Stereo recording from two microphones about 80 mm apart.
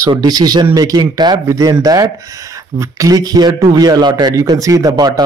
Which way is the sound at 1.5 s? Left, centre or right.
Right.